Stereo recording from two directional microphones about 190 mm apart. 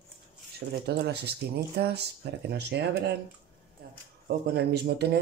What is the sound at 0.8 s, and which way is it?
Speech, 60° right (ahead or behind).